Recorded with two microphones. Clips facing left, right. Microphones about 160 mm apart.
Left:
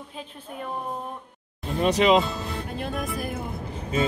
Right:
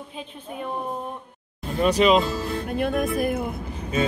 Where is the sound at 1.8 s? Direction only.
20° left (ahead or behind).